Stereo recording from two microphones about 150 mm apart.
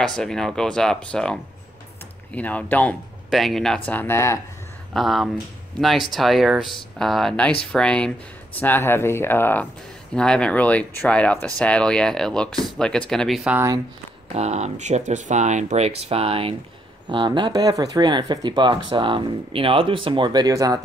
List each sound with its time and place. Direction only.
0.0 s speech: 5° left (ahead or behind)
4.9 s speech: centre (ahead or behind)
14.3 s speech: 50° right (ahead or behind); by 20.8 s 25° right (ahead or behind)